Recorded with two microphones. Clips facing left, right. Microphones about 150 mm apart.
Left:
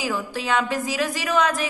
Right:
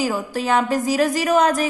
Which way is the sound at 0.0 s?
45° right (ahead or behind).